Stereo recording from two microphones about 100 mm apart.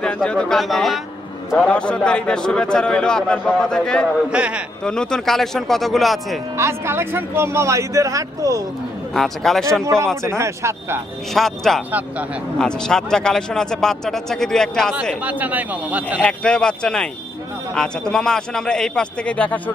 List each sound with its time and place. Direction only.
0.0 s a man's voice: 10° left (ahead or behind)
1.6 s a man's voice: 10° left (ahead or behind)
4.3 s speech: 10° right (ahead or behind)
4.8 s a man's voice: 5° left (ahead or behind)
6.5 s speech: 25° right (ahead or behind)
9.1 s a man's voice: 5° left (ahead or behind)
10.2 s speech: 30° right (ahead or behind)
11.3 s a man's voice: 5° left (ahead or behind)
15.2 s speech: 15° right (ahead or behind)
16.2 s a man's voice: 10° left (ahead or behind)